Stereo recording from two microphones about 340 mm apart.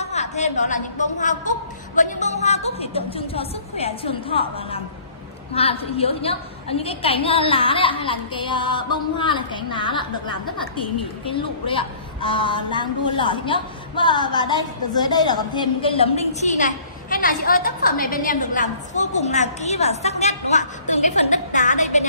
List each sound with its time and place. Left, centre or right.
0.0 s a woman's voice: centre
11.3 s a woman's voice: centre
20.9 s a sound: left